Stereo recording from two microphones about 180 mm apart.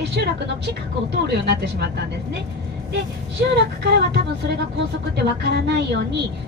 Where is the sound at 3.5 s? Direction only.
70° right (ahead or behind).